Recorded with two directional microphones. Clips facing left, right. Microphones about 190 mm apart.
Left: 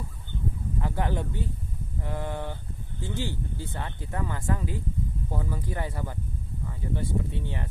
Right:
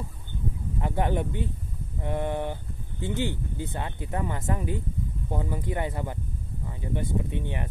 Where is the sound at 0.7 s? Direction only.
20° right (ahead or behind).